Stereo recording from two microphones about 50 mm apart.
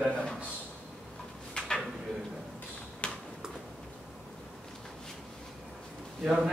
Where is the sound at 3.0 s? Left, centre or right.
Left.